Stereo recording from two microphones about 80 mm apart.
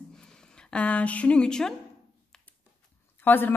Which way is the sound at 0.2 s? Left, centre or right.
Centre.